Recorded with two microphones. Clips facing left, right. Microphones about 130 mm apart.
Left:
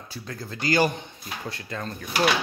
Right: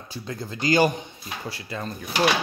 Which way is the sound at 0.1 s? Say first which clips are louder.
Right 3 dB; 20° right (ahead or behind).